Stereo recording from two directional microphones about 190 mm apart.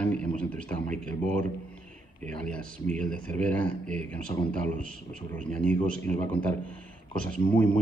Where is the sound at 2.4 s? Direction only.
5° left (ahead or behind).